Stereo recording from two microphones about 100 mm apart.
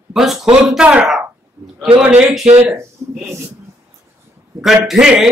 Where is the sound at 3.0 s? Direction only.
30° right (ahead or behind).